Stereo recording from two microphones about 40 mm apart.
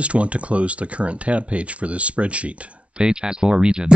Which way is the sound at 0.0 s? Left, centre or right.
Right.